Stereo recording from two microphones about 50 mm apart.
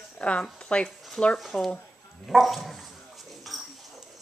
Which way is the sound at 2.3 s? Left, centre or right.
Centre.